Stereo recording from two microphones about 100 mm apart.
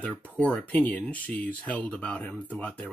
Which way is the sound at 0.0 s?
15° left (ahead or behind).